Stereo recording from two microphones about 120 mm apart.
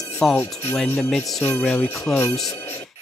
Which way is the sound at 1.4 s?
15° left (ahead or behind).